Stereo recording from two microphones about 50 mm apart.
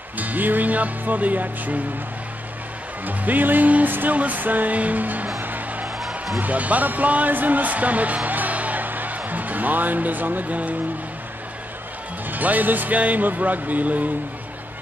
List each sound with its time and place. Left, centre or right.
0.2 s music: right
3.1 s music: right
5.9 s music: centre
6.4 s speech: right
12.3 s music: right